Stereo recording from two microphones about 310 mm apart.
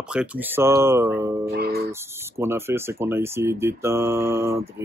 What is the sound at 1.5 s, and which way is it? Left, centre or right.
Speech, right.